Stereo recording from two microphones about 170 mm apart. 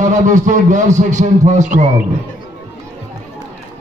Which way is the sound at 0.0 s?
45° right (ahead or behind).